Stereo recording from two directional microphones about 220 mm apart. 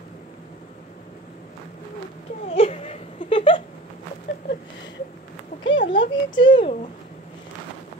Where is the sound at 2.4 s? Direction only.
25° left (ahead or behind).